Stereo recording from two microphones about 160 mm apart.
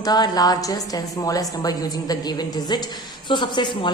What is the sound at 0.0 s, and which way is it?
A woman's voice, 25° left (ahead or behind).